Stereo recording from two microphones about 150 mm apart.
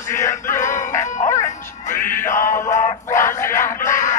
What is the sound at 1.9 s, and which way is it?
Music, 15° left (ahead or behind).